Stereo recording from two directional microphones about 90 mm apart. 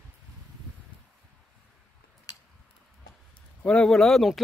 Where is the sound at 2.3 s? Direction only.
45° left (ahead or behind).